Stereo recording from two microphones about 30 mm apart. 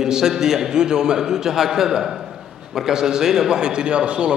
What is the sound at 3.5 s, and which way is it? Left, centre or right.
Speech, right.